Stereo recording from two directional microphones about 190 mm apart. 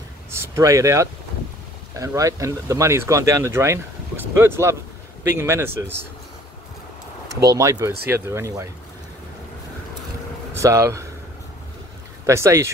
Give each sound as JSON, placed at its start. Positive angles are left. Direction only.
{"t": 0.4, "sound": "speech", "side_deg": -15}
{"t": 7.4, "sound": "speech", "side_deg": -15}
{"t": 10.6, "sound": "speech", "side_deg": -15}
{"t": 12.3, "sound": "speech", "side_deg": -15}